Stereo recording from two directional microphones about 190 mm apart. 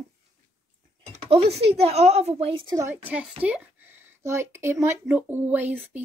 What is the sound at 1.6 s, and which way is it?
Speech, 35° right (ahead or behind).